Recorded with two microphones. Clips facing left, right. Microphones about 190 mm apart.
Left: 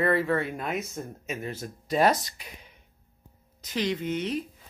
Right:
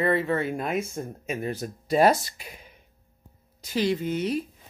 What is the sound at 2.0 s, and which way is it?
Speech, 10° right (ahead or behind).